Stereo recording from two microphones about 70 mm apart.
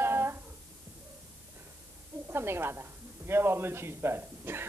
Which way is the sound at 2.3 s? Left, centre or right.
Right.